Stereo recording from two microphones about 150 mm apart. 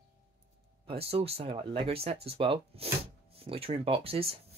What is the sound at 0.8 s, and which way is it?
Speech, 40° right (ahead or behind).